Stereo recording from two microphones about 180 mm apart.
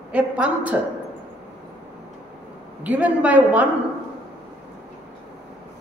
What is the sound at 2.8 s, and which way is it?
Speech, 10° right (ahead or behind).